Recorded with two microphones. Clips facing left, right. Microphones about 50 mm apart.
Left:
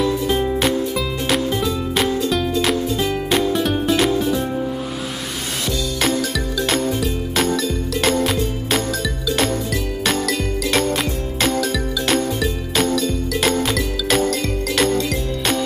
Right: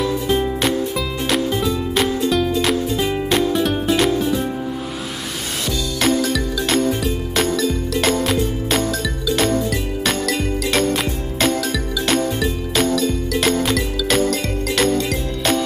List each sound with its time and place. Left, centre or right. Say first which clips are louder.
0.0 s music: even; centre
3.0 s music: right 1 dB; centre
3.3 s music: right 1 dB; centre
5.9 s music: right 4 dB; centre